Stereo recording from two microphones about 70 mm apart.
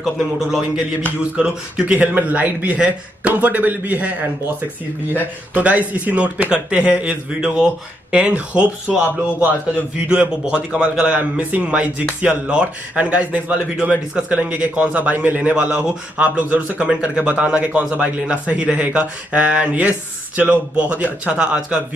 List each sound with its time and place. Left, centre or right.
0.0 s a man's voice: centre; by 4.1 s right
5.5 s a man's voice: right